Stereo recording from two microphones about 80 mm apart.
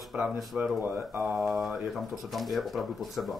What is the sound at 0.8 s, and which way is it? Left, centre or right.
Speech, right.